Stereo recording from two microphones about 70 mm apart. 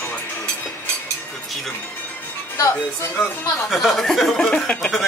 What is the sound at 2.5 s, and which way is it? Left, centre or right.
Speech, left.